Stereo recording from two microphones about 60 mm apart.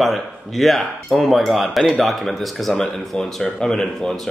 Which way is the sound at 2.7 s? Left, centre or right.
Centre.